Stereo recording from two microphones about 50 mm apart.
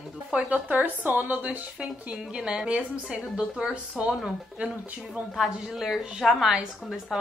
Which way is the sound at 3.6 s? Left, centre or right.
Centre.